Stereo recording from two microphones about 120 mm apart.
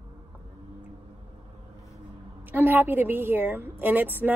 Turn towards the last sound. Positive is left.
turn(degrees=-15)  # may be behind; listen again after turning